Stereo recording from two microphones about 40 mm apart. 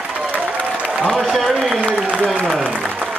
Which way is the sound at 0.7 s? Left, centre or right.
Right.